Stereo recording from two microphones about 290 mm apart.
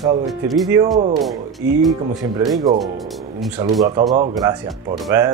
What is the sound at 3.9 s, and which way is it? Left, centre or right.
Speech, centre.